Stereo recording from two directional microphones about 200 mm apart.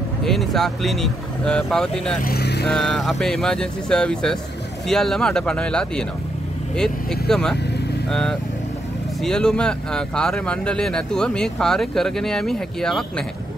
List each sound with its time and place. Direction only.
0.2 s speech: centre (ahead or behind)
2.2 s vehicle: 55° left (ahead or behind)
2.7 s speech: centre (ahead or behind)